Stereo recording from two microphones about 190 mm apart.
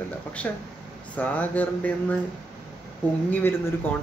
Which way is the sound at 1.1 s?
10° left (ahead or behind).